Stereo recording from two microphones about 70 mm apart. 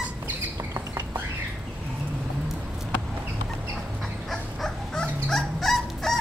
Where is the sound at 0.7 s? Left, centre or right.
Right.